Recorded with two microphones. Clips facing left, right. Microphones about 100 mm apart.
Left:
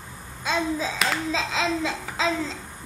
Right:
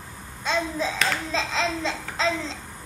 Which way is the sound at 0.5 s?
5° left (ahead or behind).